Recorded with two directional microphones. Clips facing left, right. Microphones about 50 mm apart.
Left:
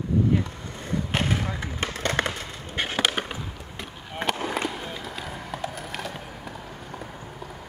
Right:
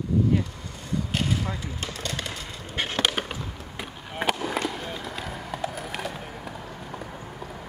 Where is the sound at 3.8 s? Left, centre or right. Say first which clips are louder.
Right 1 dB; centre.